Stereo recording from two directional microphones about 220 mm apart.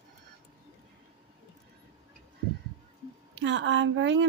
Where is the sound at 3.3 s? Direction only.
55° right (ahead or behind).